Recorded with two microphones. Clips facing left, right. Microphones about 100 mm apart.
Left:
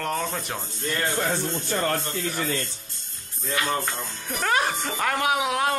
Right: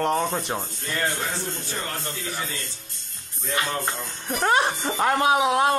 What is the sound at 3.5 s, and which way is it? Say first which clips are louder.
Speech: even; 25° right (ahead or behind).